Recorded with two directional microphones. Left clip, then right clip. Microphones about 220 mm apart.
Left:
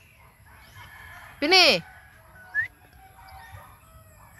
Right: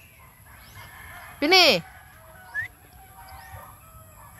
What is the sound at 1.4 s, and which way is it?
Speech, 5° right (ahead or behind).